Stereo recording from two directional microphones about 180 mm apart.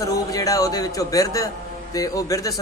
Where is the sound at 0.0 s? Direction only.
20° left (ahead or behind).